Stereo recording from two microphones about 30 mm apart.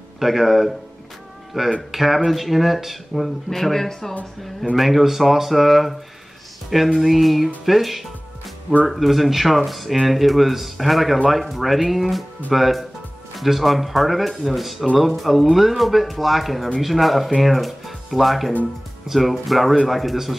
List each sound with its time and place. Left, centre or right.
0.2 s speech: centre
1.5 s speech: centre
3.4 s speech: centre
4.7 s speech: centre
7.0 s speech: centre